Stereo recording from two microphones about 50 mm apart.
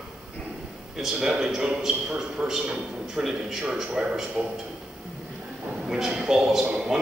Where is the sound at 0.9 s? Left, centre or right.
Centre.